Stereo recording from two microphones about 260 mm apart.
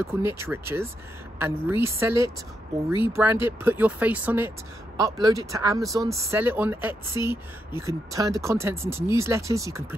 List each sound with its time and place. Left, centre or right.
0.0 s speech: centre